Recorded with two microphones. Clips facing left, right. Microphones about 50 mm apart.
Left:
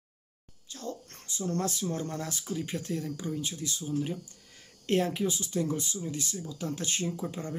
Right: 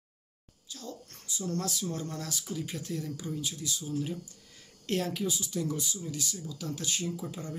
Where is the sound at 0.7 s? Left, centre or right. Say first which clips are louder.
Left 5 dB; left.